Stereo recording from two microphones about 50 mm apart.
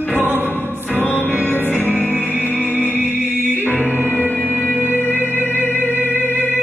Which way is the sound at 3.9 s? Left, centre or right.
Left.